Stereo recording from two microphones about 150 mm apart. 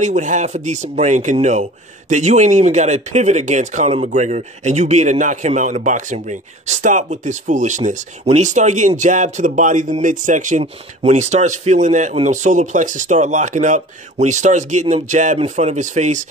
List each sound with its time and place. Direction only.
0.0 s speech: 55° right (ahead or behind)
10.6 s speech: 45° right (ahead or behind)